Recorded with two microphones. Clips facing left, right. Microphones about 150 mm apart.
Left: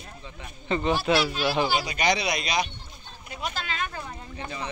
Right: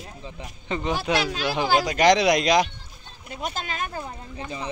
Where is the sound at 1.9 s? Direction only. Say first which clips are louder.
Right 8 dB; 90° right.